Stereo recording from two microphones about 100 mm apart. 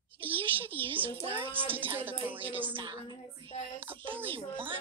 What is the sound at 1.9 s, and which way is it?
Speech, 20° right (ahead or behind).